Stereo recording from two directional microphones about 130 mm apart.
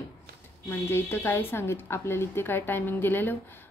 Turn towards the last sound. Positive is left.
turn(degrees=15)  # may be behind; listen again after turning